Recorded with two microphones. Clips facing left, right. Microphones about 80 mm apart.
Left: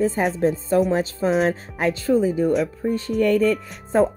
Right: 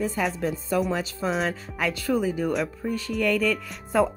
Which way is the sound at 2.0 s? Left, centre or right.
Right.